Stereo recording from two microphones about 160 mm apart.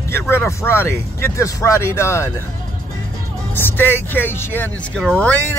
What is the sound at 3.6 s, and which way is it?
Speech, 15° left (ahead or behind).